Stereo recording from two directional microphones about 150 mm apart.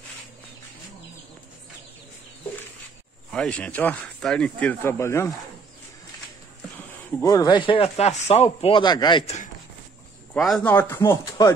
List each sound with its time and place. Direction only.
3.3 s speech: 5° left (ahead or behind)
7.1 s speech: 20° left (ahead or behind)
9.2 s speech: 50° left (ahead or behind)
10.3 s a man's voice: 5° left (ahead or behind)
10.7 s speech: 15° left (ahead or behind)